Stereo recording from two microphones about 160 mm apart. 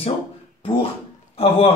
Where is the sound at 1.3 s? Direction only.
40° left (ahead or behind).